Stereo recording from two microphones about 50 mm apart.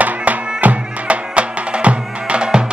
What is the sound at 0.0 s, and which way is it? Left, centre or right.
Music, right.